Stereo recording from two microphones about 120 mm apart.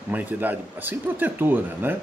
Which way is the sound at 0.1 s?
15° right (ahead or behind).